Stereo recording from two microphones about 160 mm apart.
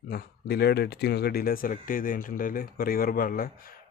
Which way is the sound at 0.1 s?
85° left.